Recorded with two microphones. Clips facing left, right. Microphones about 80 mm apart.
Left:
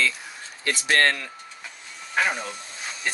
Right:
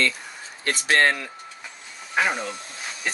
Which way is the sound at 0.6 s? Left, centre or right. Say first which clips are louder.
Right 1 dB; right.